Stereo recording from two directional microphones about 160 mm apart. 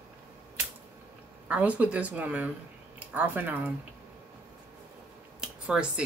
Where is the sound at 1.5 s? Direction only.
10° right (ahead or behind).